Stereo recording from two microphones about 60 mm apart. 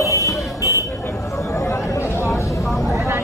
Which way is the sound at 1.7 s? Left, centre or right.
Left.